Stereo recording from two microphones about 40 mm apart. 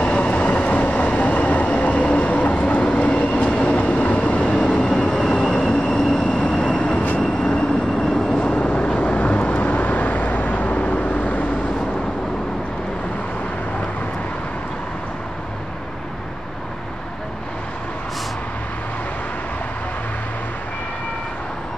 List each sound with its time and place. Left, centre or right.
0.0 s train: left
4.8 s train: centre
6.2 s vehicle: left
7.2 s train: centre
8.4 s vehicle: left